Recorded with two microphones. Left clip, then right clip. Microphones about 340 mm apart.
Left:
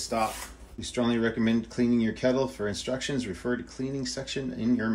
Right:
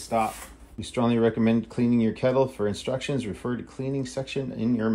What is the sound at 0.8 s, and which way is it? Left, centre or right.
Speech, centre.